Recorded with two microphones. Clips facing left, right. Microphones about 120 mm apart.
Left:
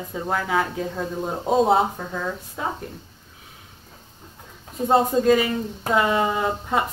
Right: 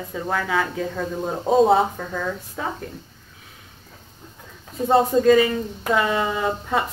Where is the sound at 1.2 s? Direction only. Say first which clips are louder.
Right 3 dB; centre (ahead or behind).